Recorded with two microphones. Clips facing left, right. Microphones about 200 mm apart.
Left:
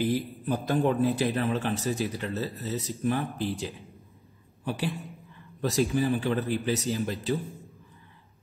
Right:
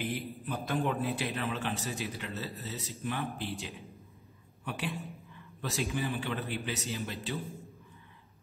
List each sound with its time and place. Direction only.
0.0 s a man's voice: 35° left (ahead or behind)